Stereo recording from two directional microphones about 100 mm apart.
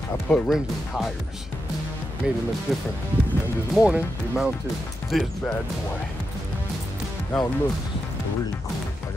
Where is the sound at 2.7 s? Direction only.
5° right (ahead or behind).